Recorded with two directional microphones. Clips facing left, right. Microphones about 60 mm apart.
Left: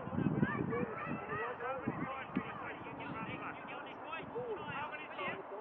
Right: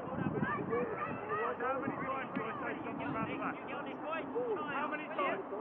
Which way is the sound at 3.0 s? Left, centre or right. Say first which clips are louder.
Right 6 dB; right.